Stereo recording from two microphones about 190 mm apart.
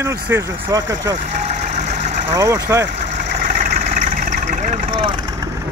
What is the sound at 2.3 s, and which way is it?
Speech, 20° right (ahead or behind).